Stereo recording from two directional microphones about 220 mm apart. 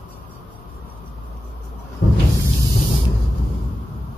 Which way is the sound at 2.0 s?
50° left (ahead or behind).